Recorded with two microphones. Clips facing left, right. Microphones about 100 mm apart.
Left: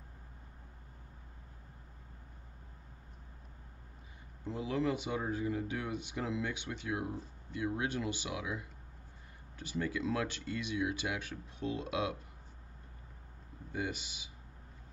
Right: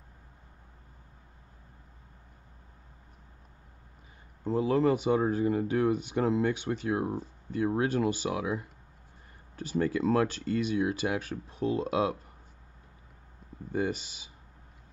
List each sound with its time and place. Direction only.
4.5 s speech: 40° right (ahead or behind)
13.7 s speech: 40° right (ahead or behind)